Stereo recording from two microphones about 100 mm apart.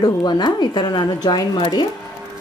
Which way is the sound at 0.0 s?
45° left (ahead or behind).